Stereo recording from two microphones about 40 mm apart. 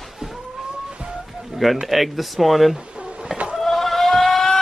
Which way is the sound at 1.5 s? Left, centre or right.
Centre.